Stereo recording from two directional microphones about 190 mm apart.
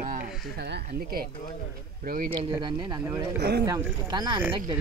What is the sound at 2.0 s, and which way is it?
Speech, 50° right (ahead or behind).